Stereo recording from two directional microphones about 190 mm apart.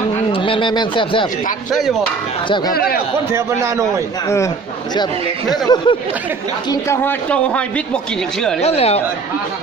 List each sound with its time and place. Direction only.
0.3 s speech: 25° left (ahead or behind)
1.7 s speech: centre (ahead or behind)
2.7 s speech: 55° left (ahead or behind)
3.3 s a man's voice: 15° right (ahead or behind)
5.5 s a man's voice: 20° left (ahead or behind); by 8.5 s 5° left (ahead or behind)
8.5 s speech: 35° left (ahead or behind)